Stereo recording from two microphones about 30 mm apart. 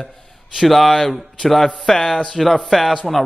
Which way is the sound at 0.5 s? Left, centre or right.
Centre.